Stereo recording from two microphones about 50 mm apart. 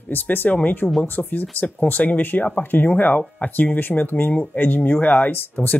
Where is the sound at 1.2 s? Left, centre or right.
Centre.